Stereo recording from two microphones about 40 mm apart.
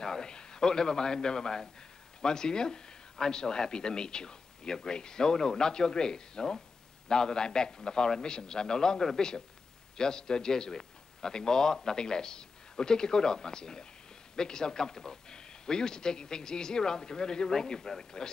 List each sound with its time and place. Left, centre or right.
0.0 s speech: centre